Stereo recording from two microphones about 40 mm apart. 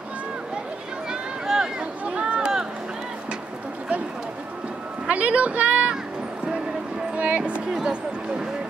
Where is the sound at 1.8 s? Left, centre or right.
Right.